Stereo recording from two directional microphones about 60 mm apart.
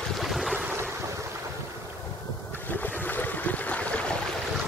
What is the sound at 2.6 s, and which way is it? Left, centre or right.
Boat, left.